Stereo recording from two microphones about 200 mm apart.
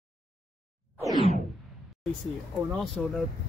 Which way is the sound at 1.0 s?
20° right (ahead or behind).